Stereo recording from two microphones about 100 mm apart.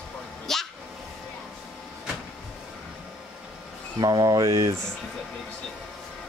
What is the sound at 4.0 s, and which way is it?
Speech, 45° right (ahead or behind).